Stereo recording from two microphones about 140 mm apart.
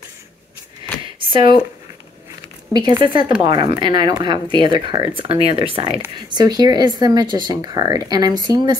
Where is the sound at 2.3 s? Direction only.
20° right (ahead or behind).